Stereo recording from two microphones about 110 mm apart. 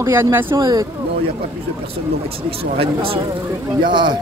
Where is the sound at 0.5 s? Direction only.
35° right (ahead or behind).